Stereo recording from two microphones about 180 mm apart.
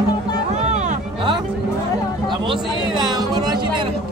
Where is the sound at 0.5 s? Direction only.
40° right (ahead or behind).